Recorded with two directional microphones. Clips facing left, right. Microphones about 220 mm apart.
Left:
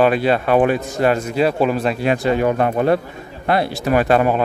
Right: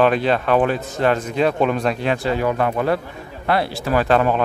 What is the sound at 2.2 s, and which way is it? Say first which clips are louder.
Speech: left 3 dB; 20° left (ahead or behind).